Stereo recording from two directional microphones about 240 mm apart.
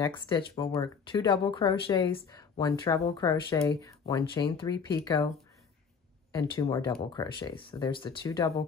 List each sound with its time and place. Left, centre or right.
0.0 s speech: centre
6.3 s speech: centre